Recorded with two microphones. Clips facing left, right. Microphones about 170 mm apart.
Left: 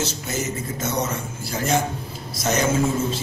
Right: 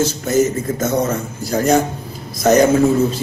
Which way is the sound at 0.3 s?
50° right (ahead or behind).